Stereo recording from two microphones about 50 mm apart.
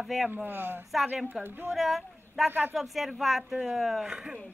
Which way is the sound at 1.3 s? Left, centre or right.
Right.